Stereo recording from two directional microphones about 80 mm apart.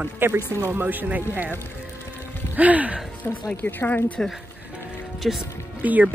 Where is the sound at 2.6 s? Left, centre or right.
Centre.